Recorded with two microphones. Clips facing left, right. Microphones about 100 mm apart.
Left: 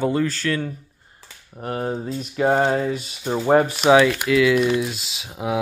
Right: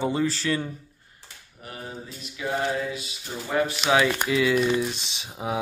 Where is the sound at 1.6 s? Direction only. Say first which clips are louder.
Left 12 dB; 50° left (ahead or behind).